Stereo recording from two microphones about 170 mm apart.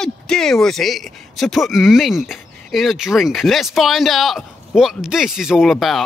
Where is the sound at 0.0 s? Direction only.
5° left (ahead or behind).